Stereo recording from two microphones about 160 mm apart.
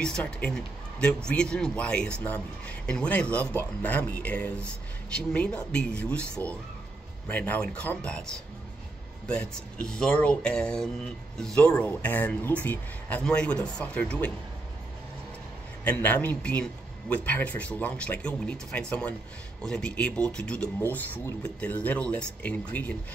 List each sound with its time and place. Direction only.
0.0 s a man's voice: 5° left (ahead or behind)
9.3 s a man's voice: 5° left (ahead or behind)
15.8 s a man's voice: 10° left (ahead or behind)